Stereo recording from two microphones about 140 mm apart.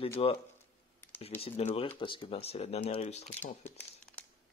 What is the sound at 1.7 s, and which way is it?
Speech, 40° left (ahead or behind).